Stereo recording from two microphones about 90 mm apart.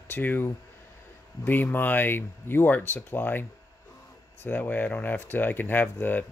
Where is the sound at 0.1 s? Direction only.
20° left (ahead or behind).